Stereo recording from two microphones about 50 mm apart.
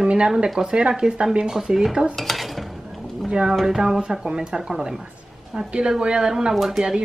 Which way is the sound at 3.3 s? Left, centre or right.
Centre.